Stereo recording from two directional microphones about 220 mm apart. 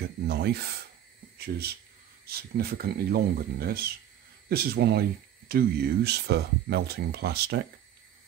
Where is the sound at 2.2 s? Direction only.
45° right (ahead or behind).